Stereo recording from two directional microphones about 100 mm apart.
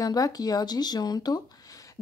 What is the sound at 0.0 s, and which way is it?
Speech, 40° left (ahead or behind).